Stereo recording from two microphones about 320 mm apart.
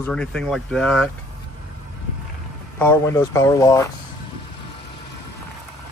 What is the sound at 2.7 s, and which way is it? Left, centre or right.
Speech, centre.